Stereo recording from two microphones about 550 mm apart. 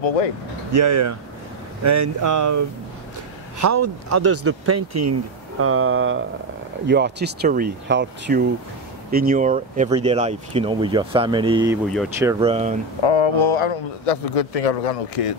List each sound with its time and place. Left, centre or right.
0.0 s speech: left
0.7 s speech: right; by 12.7 s centre
13.0 s speech: left